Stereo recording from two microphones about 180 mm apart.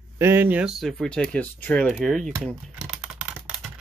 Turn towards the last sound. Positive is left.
turn(degrees=-5)  # may be behind; listen again after turning